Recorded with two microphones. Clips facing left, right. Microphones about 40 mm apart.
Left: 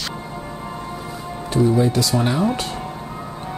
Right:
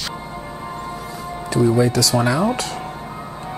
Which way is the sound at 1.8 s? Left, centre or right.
Right.